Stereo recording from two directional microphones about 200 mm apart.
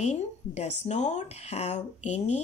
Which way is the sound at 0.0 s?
35° left (ahead or behind).